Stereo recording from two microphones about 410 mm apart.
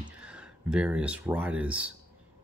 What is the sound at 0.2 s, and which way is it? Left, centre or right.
Speech, centre.